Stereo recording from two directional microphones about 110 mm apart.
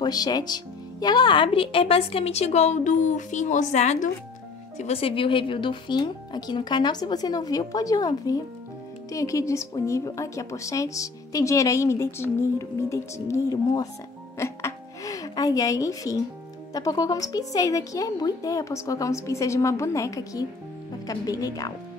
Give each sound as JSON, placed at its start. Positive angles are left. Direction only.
{"t": 0.0, "sound": "speech", "side_deg": 35}
{"t": 4.7, "sound": "a woman's voice", "side_deg": 70}
{"t": 14.4, "sound": "music", "side_deg": 30}
{"t": 16.7, "sound": "a woman's voice", "side_deg": 35}